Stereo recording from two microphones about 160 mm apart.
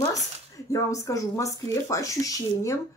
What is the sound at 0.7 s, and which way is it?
Speech, 20° left (ahead or behind).